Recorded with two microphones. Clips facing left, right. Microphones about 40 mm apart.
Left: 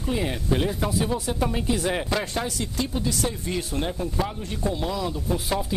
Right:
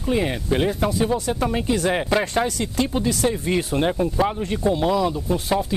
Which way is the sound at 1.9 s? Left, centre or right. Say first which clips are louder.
Right 5 dB; right.